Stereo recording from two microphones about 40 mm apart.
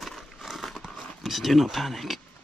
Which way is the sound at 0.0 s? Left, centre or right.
Centre.